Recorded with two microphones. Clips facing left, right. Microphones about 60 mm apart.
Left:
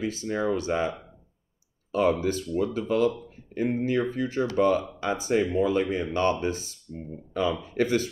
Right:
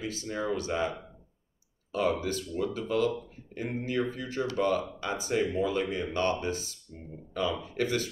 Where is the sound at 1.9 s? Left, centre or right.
Left.